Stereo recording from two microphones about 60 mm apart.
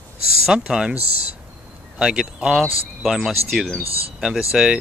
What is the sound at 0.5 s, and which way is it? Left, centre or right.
Speech, centre.